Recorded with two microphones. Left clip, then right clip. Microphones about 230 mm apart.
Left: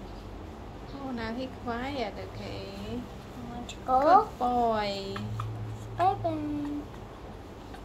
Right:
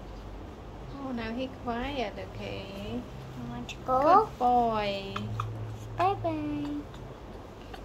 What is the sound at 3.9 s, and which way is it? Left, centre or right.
A woman's voice, centre.